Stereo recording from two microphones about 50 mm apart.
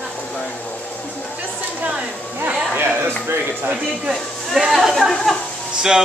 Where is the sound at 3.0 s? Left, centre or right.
Right.